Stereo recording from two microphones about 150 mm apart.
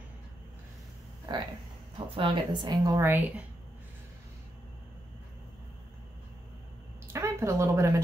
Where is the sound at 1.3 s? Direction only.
30° right (ahead or behind).